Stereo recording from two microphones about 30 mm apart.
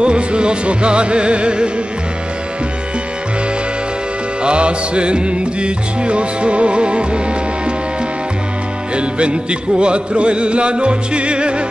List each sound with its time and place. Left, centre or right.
0.0 s music: right
4.4 s music: right
8.9 s music: right